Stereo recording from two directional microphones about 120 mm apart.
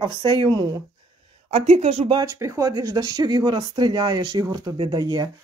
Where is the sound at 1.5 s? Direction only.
50° right (ahead or behind).